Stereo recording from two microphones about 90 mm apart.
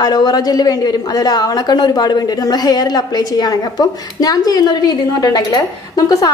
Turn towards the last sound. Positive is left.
turn(degrees=45)  # may be behind; listen again after turning